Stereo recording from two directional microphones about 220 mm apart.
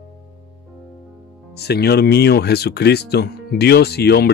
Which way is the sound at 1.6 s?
45° left (ahead or behind).